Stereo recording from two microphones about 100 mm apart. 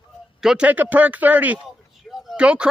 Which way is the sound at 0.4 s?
5° right (ahead or behind).